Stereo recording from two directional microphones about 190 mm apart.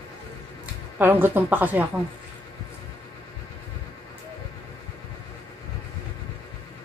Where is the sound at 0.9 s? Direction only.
10° right (ahead or behind).